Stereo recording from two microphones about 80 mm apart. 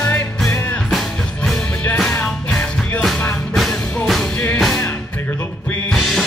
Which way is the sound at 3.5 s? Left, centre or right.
Centre.